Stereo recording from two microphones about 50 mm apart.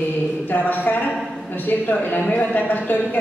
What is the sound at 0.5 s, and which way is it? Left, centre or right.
A woman's voice, left.